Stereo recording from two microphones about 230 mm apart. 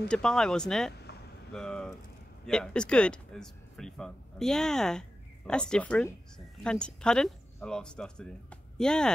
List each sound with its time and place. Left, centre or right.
0.1 s a woman's voice: centre